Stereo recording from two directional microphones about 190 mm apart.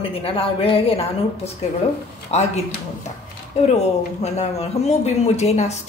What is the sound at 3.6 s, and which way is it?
Speech, 35° left (ahead or behind).